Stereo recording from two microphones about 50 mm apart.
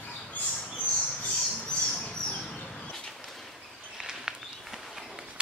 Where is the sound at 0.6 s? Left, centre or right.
Centre.